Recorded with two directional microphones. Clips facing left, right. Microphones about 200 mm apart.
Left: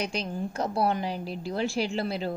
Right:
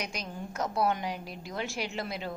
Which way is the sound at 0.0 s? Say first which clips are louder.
Left 7 dB; 30° left (ahead or behind).